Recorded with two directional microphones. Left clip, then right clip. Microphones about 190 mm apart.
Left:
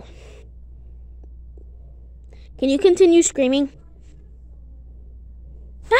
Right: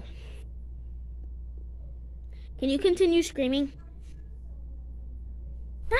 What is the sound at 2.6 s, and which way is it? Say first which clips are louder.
A woman's voice: left 9 dB; 20° left (ahead or behind).